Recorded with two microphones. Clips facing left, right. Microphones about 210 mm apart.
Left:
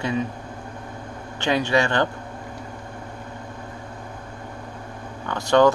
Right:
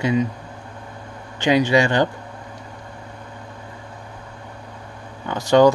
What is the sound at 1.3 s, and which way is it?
Speech, 15° right (ahead or behind).